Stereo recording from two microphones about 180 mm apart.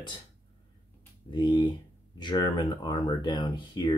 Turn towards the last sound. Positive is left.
turn(degrees=25)  # may be behind; listen again after turning